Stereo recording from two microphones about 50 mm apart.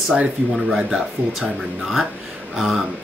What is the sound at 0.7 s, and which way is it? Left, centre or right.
Speech, centre.